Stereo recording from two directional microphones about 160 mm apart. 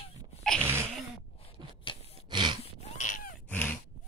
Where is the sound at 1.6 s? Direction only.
30° right (ahead or behind).